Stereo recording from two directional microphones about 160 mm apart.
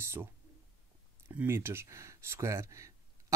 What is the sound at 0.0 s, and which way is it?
Speech, 15° right (ahead or behind).